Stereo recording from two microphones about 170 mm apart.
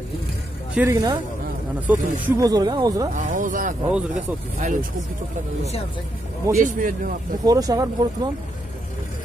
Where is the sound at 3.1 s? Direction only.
50° right (ahead or behind).